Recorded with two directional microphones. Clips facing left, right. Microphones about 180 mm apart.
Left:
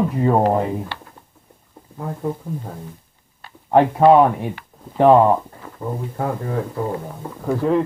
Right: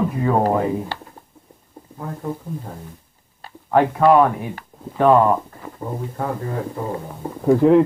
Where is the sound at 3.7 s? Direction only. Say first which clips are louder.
Left 2 dB; 25° left (ahead or behind).